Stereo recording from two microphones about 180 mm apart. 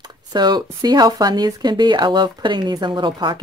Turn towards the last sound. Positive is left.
turn(degrees=-25)  # may be behind; listen again after turning